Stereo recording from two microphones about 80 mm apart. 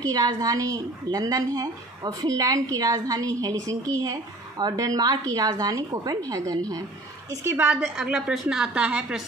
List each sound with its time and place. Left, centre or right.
0.0 s a woman's voice: right
7.4 s a woman's voice: right